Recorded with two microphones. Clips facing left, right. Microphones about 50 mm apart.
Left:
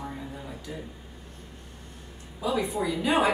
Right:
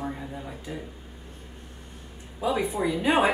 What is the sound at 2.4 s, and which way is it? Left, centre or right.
Speech, right.